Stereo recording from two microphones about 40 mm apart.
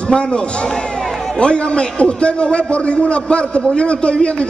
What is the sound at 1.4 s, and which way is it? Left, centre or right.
A man's voice, left.